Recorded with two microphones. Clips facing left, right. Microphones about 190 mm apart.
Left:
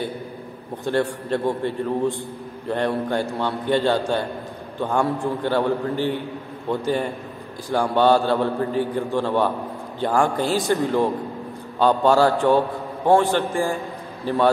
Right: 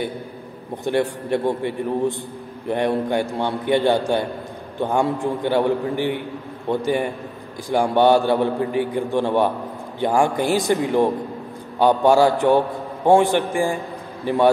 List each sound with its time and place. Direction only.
0.8 s a man's voice: 15° right (ahead or behind)